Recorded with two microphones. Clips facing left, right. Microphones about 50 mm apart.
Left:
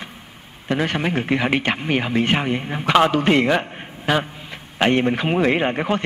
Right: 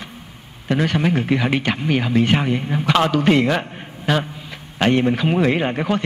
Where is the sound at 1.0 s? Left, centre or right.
Centre.